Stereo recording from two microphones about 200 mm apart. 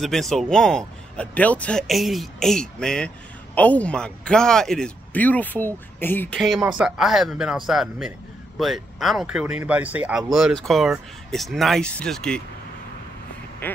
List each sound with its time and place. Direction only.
0.0 s speech: centre (ahead or behind)